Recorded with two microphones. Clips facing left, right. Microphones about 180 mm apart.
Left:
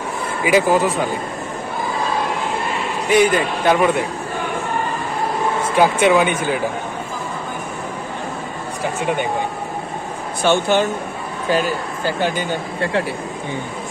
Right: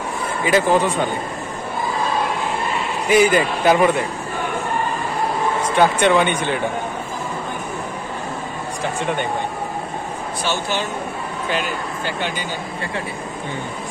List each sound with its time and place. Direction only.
0.4 s speech: 10° left (ahead or behind)
3.1 s speech: 5° right (ahead or behind)
5.6 s speech: 5° left (ahead or behind)
10.4 s speech: 55° left (ahead or behind)
12.1 s speech: 45° left (ahead or behind)